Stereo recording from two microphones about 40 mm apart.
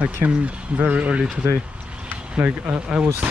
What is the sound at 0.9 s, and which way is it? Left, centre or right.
Speech, right.